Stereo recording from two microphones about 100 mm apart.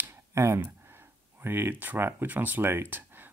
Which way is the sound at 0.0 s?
25° right (ahead or behind).